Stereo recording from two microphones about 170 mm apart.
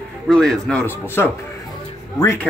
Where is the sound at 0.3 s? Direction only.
5° left (ahead or behind).